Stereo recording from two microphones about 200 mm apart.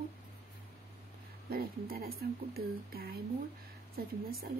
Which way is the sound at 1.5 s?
50° right (ahead or behind).